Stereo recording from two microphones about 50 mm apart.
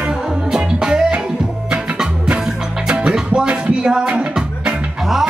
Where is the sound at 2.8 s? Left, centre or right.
Centre.